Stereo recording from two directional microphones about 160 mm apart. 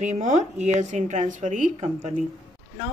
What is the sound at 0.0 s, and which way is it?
Speech, 45° right (ahead or behind).